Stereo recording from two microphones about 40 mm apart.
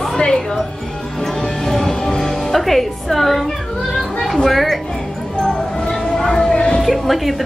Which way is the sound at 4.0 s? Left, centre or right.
Centre.